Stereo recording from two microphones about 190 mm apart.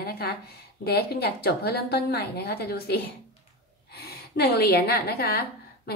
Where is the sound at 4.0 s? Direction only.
55° left (ahead or behind).